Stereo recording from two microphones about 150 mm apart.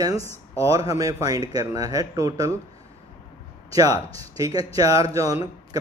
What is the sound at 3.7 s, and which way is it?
Speech, 25° right (ahead or behind).